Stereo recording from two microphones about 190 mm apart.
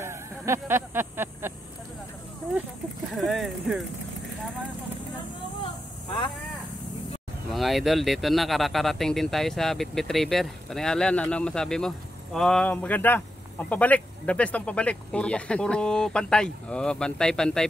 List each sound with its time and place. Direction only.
0.0 s a sound: 15° right (ahead or behind)
3.2 s speech: centre (ahead or behind)
5.6 s vehicle: 25° left (ahead or behind)
7.5 s speech: centre (ahead or behind)